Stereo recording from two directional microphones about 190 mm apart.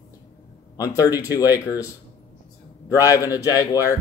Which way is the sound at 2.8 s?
15° left (ahead or behind).